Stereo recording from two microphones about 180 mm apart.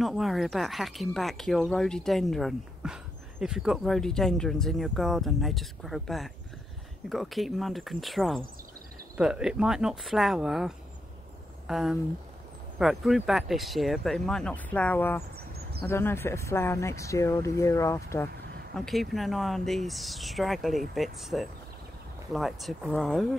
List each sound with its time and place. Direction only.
0.0 s speech: centre (ahead or behind); by 18.3 s 15° left (ahead or behind)
18.8 s speech: centre (ahead or behind)